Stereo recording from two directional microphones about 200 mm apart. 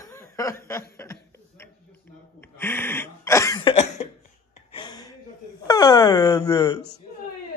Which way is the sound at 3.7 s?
30° left (ahead or behind).